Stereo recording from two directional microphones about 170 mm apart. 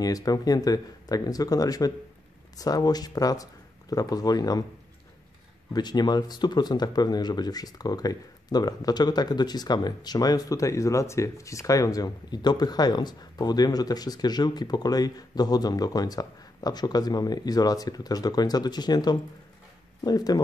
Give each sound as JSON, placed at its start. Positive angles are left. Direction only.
{"t": 0.0, "sound": "speech", "side_deg": 20}
{"t": 5.7, "sound": "speech", "side_deg": 25}